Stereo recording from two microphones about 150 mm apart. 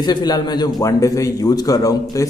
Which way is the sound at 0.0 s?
30° left (ahead or behind).